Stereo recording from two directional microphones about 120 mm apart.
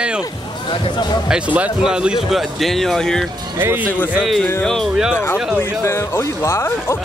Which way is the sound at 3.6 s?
20° right (ahead or behind).